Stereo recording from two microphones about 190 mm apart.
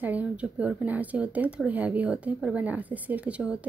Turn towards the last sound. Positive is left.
turn(degrees=-5)  # may be behind; listen again after turning